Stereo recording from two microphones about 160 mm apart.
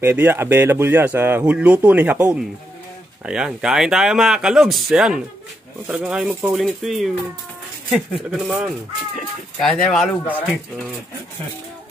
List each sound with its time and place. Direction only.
0.0 s speech: 15° right (ahead or behind); by 10.3 s 5° left (ahead or behind)